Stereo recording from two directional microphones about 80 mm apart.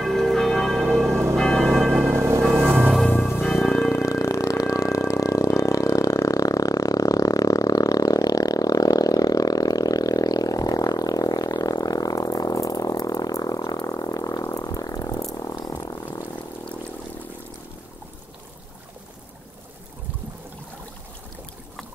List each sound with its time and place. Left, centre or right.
0.0 s church bell: centre
2.0 s music: right
3.1 s music: centre
3.8 s a sound: left
15.6 s frog: left